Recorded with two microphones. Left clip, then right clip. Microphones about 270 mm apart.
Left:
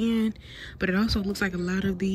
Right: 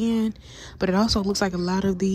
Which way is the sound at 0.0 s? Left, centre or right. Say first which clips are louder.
Right 2 dB; centre.